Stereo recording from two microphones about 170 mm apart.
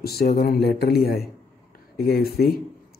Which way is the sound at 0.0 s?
70° left (ahead or behind).